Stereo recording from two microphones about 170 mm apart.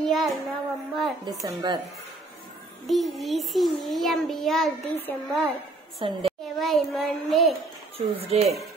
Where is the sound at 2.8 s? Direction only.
Centre (ahead or behind).